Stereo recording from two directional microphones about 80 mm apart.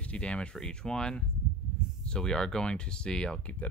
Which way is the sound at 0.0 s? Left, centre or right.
Centre.